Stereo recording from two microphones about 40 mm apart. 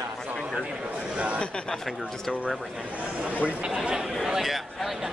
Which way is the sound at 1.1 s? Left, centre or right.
Right.